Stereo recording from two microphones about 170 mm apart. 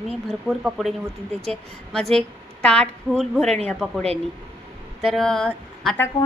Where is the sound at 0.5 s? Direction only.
Centre (ahead or behind).